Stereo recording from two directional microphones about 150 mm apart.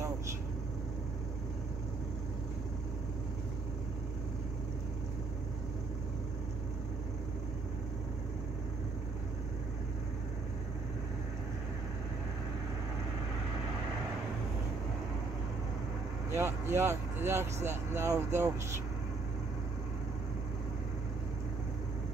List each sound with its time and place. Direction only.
16.3 s speech: 15° right (ahead or behind)